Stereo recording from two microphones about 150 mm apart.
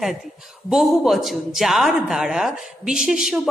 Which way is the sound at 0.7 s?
Centre (ahead or behind).